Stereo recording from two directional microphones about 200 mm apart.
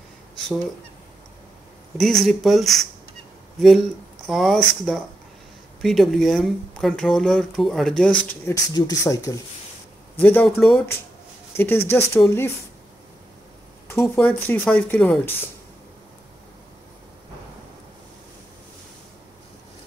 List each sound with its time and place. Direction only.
2.0 s speech: centre (ahead or behind)
4.3 s speech: centre (ahead or behind)
13.8 s speech: 10° left (ahead or behind)